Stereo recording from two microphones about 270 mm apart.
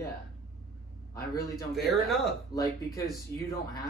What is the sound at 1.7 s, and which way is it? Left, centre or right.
Speech, centre.